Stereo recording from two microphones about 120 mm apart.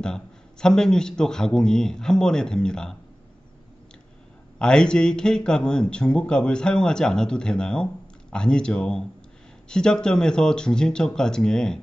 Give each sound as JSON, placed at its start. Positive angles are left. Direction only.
{"t": 0.0, "sound": "a man's voice", "side_deg": 5}
{"t": 4.6, "sound": "a man's voice", "side_deg": 5}